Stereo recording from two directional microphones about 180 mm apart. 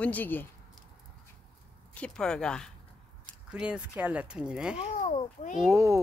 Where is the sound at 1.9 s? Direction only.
5° left (ahead or behind).